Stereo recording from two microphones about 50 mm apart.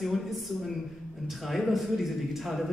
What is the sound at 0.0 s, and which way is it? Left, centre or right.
A man's voice, centre.